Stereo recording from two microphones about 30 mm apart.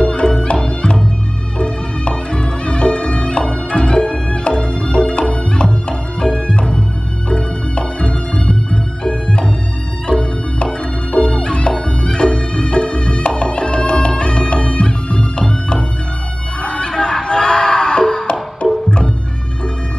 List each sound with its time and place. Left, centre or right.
0.0 s music: left